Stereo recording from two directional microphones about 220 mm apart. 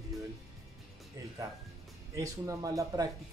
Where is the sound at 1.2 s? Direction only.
15° right (ahead or behind).